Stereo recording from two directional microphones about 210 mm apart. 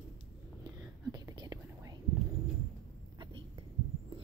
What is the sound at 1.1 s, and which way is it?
Whispering, 20° right (ahead or behind).